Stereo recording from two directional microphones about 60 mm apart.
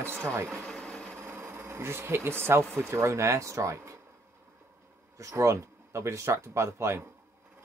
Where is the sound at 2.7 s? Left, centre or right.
Right.